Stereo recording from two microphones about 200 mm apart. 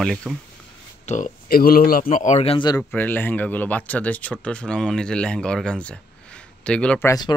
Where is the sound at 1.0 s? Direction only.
40° left (ahead or behind).